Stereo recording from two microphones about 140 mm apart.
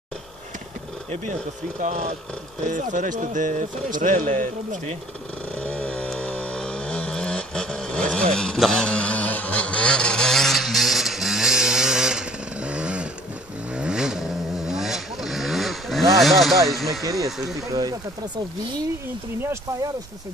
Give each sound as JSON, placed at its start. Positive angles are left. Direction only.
{"t": 1.8, "sound": "speech", "side_deg": -55}
{"t": 5.6, "sound": "a sound", "side_deg": 10}
{"t": 13.7, "sound": "vehicle", "side_deg": -5}
{"t": 17.6, "sound": "speech", "side_deg": -25}
{"t": 19.4, "sound": "speech", "side_deg": -20}